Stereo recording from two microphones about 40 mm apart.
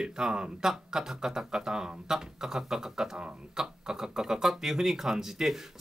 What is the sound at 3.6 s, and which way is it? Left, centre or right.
Speech, centre.